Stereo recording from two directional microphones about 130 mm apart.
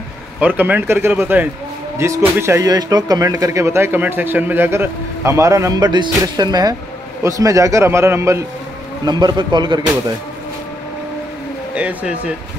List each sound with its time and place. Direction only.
0.4 s a man's voice: 10° right (ahead or behind)
9.0 s a man's voice: 35° right (ahead or behind)
11.7 s speech: 10° right (ahead or behind)